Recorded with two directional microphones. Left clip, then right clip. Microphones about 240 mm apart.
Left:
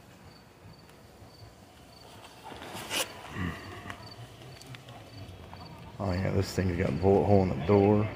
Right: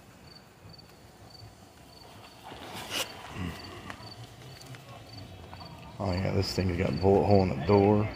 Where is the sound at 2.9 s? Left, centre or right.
Centre.